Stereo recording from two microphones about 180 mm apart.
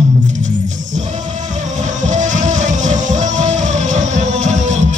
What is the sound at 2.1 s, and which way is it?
Music, 45° right (ahead or behind).